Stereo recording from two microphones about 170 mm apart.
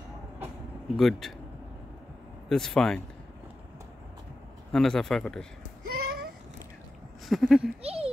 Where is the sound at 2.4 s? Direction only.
Centre (ahead or behind).